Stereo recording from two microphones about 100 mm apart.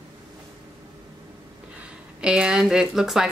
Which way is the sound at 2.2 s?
10° right (ahead or behind).